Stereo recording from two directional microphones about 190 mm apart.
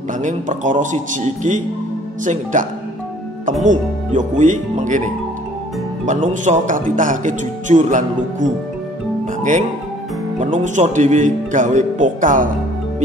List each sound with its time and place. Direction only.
0.2 s a man's voice: 40° right (ahead or behind)